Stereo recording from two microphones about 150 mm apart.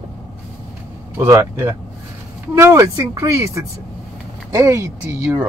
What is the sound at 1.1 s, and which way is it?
Speech, 20° right (ahead or behind).